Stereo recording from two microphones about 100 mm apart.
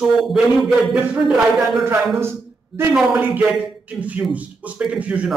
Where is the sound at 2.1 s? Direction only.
25° right (ahead or behind).